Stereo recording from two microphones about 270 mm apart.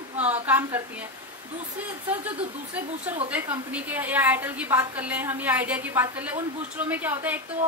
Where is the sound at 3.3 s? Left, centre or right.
Centre.